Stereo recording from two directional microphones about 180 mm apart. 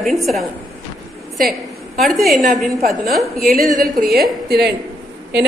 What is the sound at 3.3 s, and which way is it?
A woman's voice, 55° right (ahead or behind).